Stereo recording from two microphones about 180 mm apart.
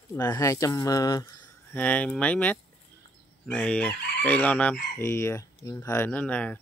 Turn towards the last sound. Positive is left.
turn(degrees=10)  # may be behind; listen again after turning